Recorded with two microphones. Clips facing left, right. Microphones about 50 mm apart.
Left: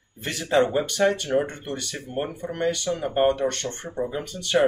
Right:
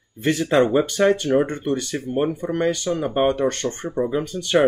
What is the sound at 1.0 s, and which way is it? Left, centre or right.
Speech, right.